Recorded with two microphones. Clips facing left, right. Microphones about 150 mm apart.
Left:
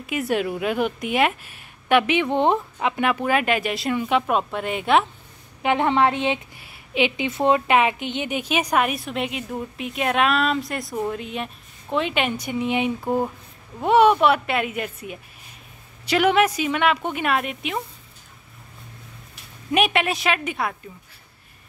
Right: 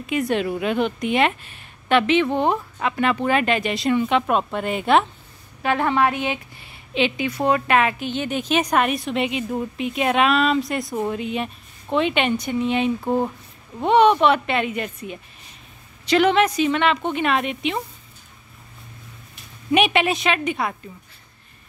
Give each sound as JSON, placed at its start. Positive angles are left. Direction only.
{"t": 0.0, "sound": "a woman's voice", "side_deg": 10}
{"t": 5.6, "sound": "a woman's voice", "side_deg": 20}
{"t": 6.6, "sound": "a woman's voice", "side_deg": 10}
{"t": 19.7, "sound": "a woman's voice", "side_deg": 0}